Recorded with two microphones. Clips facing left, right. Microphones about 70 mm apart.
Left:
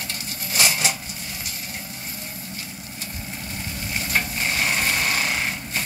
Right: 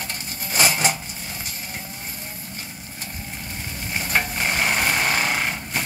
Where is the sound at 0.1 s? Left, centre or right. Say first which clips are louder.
Right 1 dB; right.